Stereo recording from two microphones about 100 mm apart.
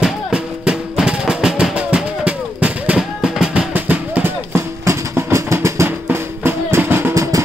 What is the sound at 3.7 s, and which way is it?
Music, 15° right (ahead or behind).